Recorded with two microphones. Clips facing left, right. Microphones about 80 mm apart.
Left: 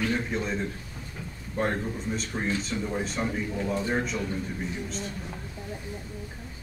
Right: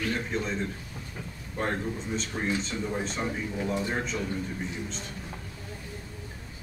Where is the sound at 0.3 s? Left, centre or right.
Centre.